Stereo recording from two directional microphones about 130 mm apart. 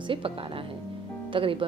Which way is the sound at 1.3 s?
45° right (ahead or behind).